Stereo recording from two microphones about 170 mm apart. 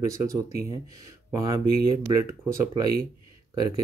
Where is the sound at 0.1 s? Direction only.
20° right (ahead or behind).